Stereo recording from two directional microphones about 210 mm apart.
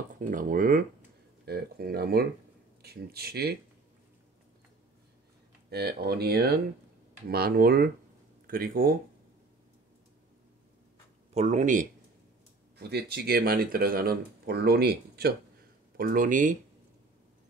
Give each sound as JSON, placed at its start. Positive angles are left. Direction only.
{"t": 0.2, "sound": "speech", "side_deg": -40}
{"t": 5.7, "sound": "speech", "side_deg": -50}
{"t": 11.3, "sound": "speech", "side_deg": -35}
{"t": 12.7, "sound": "speech", "side_deg": -50}